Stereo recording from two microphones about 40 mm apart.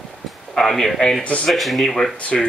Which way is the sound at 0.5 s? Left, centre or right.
Centre.